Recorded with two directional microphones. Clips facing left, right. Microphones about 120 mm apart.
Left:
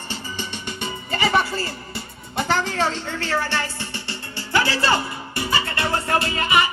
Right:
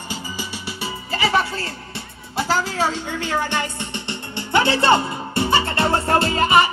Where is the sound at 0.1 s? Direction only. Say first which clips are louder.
Right 1 dB; 10° right (ahead or behind).